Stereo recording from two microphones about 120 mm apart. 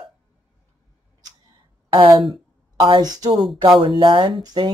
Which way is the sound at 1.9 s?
40° right (ahead or behind).